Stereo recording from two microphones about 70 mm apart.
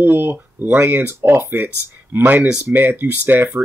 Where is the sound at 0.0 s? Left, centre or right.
Right.